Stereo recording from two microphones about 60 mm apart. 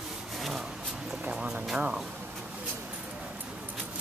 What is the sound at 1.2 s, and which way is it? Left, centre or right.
Vehicle, centre.